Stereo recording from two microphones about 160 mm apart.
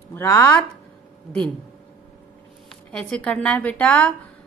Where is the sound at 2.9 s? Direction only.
5° left (ahead or behind).